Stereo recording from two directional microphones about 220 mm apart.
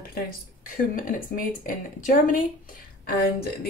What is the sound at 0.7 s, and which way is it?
Speech, 40° left (ahead or behind).